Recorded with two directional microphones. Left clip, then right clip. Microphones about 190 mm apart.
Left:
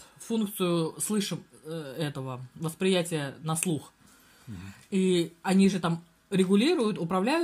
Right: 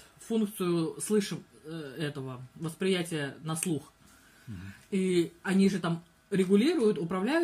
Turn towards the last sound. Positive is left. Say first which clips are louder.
# left 2 dB
turn(degrees=50)  # may be behind; listen again after turning